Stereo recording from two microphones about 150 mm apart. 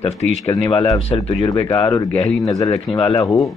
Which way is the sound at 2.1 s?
5° left (ahead or behind).